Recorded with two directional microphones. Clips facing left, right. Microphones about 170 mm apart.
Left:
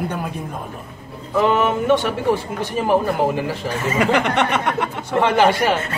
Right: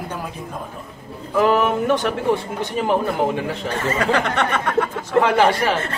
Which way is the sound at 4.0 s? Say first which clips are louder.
Left 4 dB; 15° left (ahead or behind).